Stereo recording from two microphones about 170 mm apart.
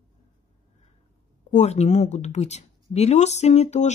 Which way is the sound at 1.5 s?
40° left (ahead or behind).